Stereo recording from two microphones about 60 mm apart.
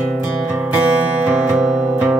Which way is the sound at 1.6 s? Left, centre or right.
Centre.